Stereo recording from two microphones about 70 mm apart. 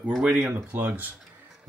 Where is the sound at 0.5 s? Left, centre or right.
Right.